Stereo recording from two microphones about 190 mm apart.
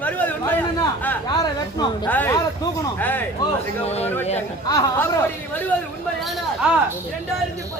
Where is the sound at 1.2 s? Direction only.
20° left (ahead or behind).